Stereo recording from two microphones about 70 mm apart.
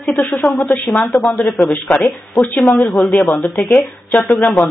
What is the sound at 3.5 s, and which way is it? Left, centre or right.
Speech, left.